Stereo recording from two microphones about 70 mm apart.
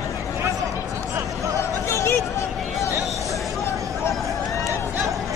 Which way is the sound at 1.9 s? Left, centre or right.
Left.